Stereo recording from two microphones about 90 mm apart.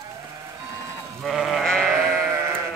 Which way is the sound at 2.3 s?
25° right (ahead or behind).